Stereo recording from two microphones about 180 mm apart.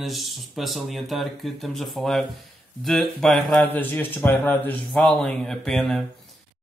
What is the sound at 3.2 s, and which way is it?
Speech, 5° left (ahead or behind).